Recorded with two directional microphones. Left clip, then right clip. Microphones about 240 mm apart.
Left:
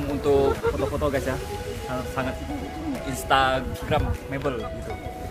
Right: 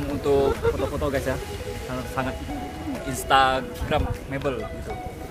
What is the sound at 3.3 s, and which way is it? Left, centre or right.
Speech, right.